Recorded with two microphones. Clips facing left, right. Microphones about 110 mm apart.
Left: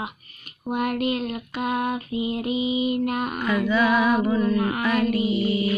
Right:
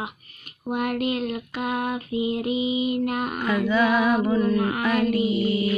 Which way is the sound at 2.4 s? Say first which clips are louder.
Even; 35° left (ahead or behind).